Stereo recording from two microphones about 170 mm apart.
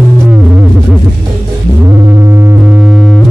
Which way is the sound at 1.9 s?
15° right (ahead or behind).